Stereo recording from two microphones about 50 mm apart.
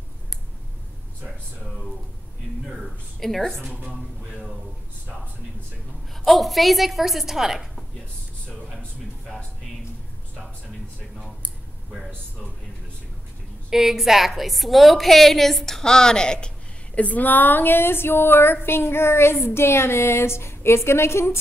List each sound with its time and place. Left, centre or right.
3.2 s a woman's voice: centre
6.2 s a woman's voice: centre
13.7 s a woman's voice: centre; by 21.4 s left